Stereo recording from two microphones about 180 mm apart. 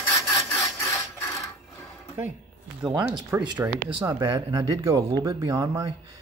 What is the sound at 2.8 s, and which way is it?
Speech, 5° right (ahead or behind).